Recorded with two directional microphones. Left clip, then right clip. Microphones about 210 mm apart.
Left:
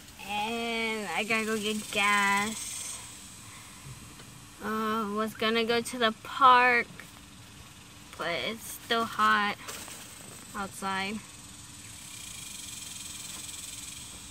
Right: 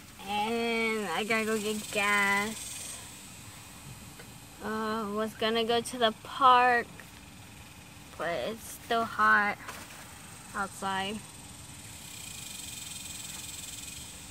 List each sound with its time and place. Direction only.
0.3 s a sound: 5° right (ahead or behind)
4.6 s speech: 5° left (ahead or behind)
8.2 s speech: centre (ahead or behind)
9.0 s speech: 15° left (ahead or behind)
10.8 s speech: centre (ahead or behind)